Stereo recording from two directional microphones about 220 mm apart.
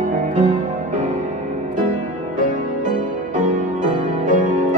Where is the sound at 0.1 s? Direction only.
35° right (ahead or behind).